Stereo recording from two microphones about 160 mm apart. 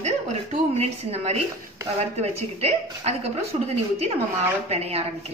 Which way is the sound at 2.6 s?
40° right (ahead or behind).